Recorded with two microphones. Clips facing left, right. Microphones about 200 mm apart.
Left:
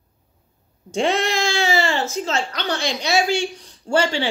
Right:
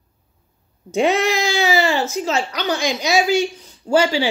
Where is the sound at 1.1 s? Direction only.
30° left (ahead or behind).